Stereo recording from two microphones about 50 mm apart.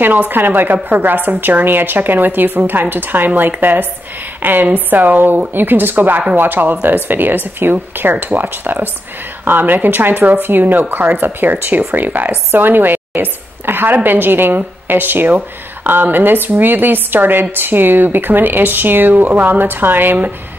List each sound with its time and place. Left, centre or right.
0.0 s a woman's voice: right